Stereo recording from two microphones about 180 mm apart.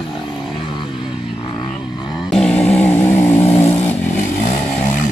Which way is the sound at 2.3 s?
5° left (ahead or behind).